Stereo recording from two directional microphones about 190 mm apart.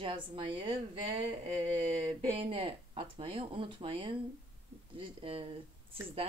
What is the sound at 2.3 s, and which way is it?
Speech, 30° right (ahead or behind).